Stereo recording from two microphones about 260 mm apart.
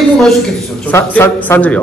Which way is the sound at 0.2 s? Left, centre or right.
Centre.